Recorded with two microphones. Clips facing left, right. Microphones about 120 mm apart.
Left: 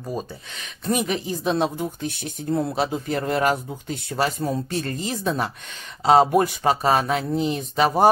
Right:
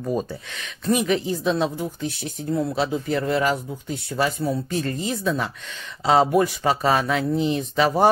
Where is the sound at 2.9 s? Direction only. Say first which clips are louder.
Right 2 dB; 45° left (ahead or behind).